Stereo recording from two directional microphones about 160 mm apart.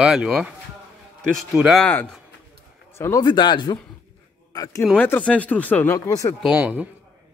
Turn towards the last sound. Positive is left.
turn(degrees=-10)  # may be behind; listen again after turning